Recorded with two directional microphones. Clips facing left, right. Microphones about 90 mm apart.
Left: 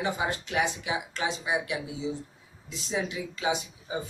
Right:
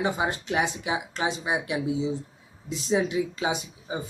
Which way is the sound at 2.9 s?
25° right (ahead or behind).